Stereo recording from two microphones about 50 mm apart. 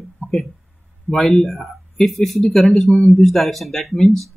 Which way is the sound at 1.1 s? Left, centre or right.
Centre.